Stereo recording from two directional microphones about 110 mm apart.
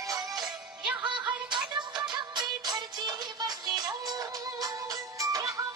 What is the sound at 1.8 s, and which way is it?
Music, 40° right (ahead or behind).